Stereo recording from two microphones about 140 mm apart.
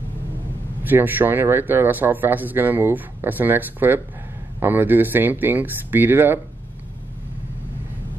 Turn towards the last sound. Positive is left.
turn(degrees=-15)  # may be behind; listen again after turning